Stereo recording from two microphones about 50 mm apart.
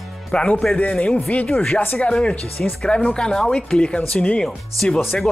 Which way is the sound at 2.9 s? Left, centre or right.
Centre.